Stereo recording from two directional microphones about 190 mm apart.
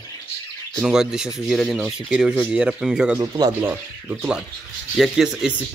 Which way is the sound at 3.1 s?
20° right (ahead or behind).